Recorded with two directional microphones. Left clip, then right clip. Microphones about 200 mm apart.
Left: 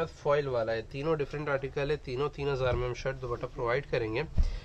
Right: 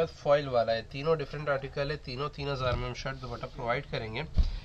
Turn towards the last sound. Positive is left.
turn(degrees=50)  # may be behind; listen again after turning